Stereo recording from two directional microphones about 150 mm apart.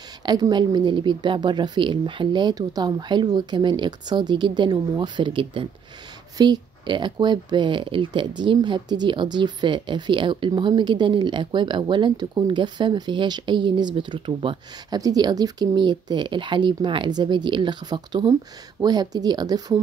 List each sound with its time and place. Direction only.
0.2 s speech: 30° right (ahead or behind)